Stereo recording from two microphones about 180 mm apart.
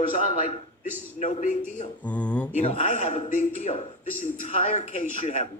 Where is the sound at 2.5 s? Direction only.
45° left (ahead or behind).